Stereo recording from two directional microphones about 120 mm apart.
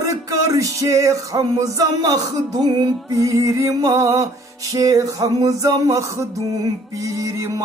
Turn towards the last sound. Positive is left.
turn(degrees=-30)  # may be behind; listen again after turning